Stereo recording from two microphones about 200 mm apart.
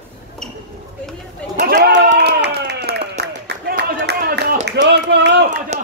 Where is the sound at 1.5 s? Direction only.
45° right (ahead or behind).